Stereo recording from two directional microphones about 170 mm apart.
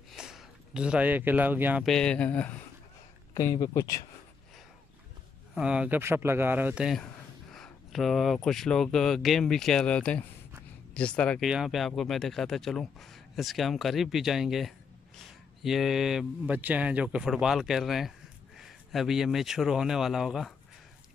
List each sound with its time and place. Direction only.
0.1 s speech: centre (ahead or behind)
1.9 s speech: 5° left (ahead or behind)
3.3 s speech: 20° left (ahead or behind)
5.5 s speech: 5° right (ahead or behind)